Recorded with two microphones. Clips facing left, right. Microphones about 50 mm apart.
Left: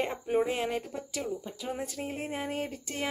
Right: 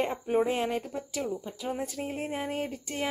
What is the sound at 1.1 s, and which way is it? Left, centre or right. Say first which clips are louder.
Speech: right 2 dB; right.